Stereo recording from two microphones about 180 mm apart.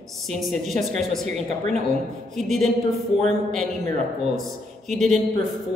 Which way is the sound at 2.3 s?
Centre (ahead or behind).